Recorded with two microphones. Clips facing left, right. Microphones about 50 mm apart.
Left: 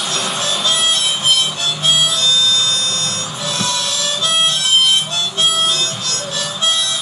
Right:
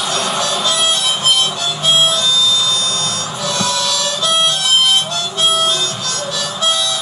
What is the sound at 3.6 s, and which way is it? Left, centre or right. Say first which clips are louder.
Harmonica: right 2 dB; left.